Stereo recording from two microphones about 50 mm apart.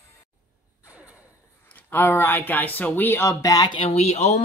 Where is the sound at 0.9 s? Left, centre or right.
Right.